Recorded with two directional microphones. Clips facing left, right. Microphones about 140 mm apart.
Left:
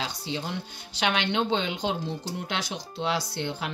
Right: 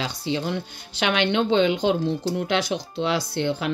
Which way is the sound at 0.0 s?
70° right (ahead or behind).